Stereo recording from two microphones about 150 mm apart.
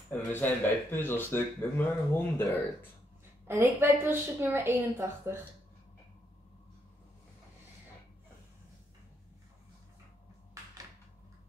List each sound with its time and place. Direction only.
0.1 s speech: 15° left (ahead or behind)
3.4 s a woman's voice: 15° right (ahead or behind)